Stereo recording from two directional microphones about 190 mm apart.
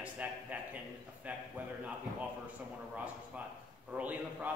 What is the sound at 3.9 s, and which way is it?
Speech, 10° right (ahead or behind).